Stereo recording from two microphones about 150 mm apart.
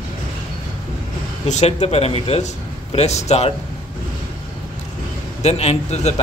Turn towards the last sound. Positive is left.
turn(degrees=45)  # may be behind; listen again after turning